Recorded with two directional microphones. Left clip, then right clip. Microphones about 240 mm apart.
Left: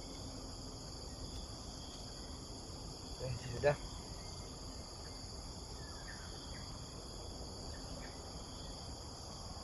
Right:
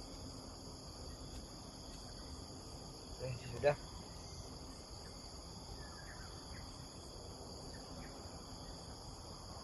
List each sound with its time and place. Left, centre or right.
3.6 s speech: centre